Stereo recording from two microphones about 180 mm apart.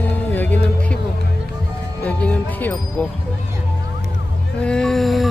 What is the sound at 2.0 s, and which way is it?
Speech, 5° left (ahead or behind).